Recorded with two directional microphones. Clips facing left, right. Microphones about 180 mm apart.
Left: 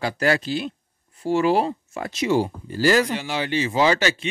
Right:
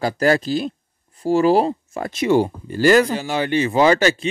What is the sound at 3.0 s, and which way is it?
Speech, 40° right (ahead or behind).